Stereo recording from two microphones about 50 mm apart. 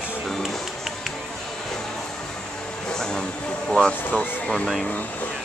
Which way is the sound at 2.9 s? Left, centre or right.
Centre.